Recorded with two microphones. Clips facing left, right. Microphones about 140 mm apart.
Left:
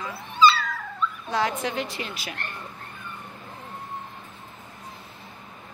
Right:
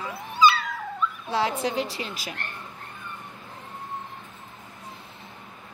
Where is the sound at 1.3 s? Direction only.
30° right (ahead or behind).